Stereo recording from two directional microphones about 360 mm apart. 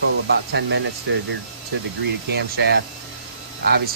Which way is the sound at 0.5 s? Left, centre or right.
Right.